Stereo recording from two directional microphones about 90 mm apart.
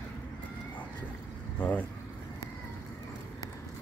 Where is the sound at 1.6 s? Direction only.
15° left (ahead or behind).